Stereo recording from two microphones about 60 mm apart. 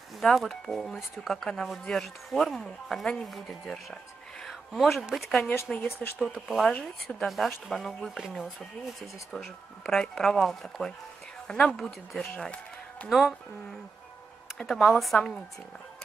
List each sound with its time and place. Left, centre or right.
0.2 s speech: centre
4.5 s a sound: centre
5.1 s speech: centre
11.7 s speech: centre
12.2 s speech: centre
13.1 s speech: centre
15.1 s speech: centre